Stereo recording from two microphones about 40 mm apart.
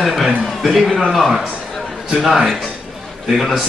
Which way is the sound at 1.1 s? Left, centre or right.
Centre.